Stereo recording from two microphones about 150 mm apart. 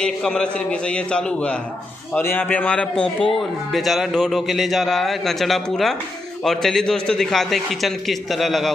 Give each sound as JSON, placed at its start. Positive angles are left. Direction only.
{"t": 0.0, "sound": "a man's voice", "side_deg": 5}